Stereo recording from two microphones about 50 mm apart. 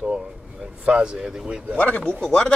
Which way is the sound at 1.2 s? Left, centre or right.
Centre.